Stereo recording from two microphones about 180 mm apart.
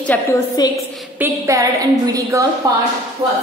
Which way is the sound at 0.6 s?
20° left (ahead or behind).